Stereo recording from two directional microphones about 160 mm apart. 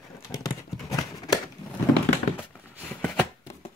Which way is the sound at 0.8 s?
20° left (ahead or behind).